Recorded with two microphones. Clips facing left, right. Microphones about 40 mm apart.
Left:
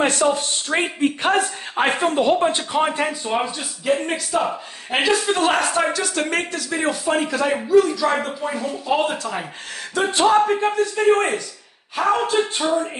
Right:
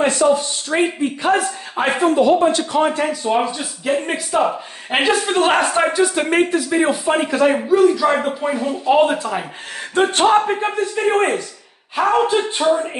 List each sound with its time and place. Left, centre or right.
0.0 s speech: left
0.7 s speech: left
2.0 s speech: left
2.4 s speech: left
3.3 s speech: centre; by 5.7 s right
5.7 s speech: centre
8.9 s speech: centre
9.9 s speech: right
10.4 s speech: centre